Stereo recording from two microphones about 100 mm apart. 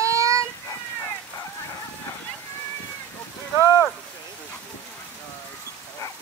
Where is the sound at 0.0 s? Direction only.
30° right (ahead or behind).